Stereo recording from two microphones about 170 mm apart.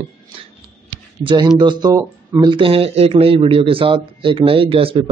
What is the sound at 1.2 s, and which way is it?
Speech, 25° right (ahead or behind).